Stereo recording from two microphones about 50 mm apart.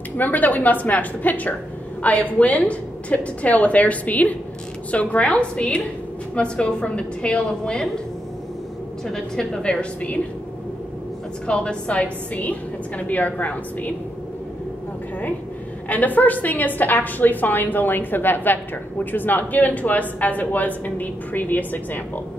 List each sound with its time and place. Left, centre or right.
0.2 s a woman's voice: left; by 7.9 s centre
9.0 s a woman's voice: centre
9.6 s a woman's voice: left
11.4 s a woman's voice: centre
15.9 s a woman's voice: left